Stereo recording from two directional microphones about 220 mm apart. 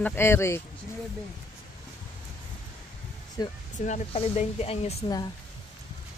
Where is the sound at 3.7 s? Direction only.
35° left (ahead or behind); by 5.3 s 15° left (ahead or behind).